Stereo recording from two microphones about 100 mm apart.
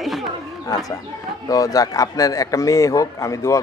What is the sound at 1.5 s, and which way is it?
Speech, 35° left (ahead or behind).